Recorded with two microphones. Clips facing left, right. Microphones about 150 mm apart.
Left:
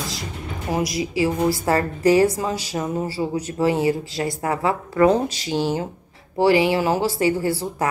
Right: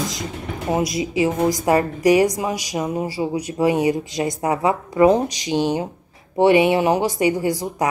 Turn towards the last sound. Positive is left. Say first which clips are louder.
# right 2 dB
turn(degrees=-15)  # may be behind; listen again after turning